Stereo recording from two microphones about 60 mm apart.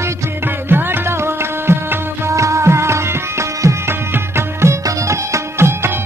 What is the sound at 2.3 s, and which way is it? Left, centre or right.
Music, right.